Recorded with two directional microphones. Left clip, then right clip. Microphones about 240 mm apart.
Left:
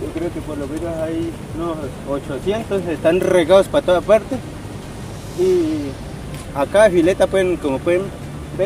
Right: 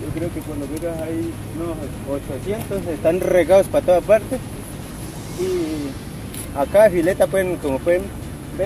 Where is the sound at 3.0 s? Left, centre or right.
Left.